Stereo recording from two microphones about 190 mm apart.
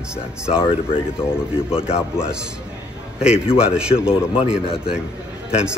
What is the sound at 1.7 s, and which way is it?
Speech, 30° left (ahead or behind).